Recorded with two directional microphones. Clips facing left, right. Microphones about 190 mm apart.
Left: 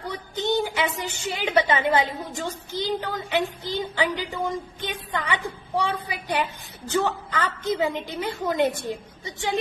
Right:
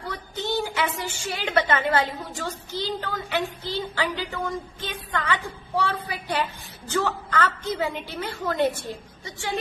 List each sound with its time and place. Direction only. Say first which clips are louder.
0.1 s a woman's voice: left 3 dB; 15° left (ahead or behind)